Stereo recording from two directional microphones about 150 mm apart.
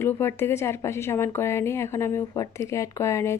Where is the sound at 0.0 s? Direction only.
15° left (ahead or behind).